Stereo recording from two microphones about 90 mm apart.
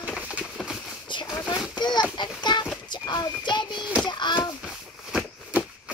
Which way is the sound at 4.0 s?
55° left (ahead or behind).